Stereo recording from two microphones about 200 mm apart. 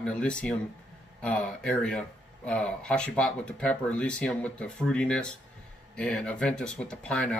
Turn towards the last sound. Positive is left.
turn(degrees=5)  # may be behind; listen again after turning